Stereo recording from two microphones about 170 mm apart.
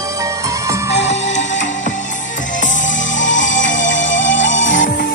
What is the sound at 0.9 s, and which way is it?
Music, 40° left (ahead or behind).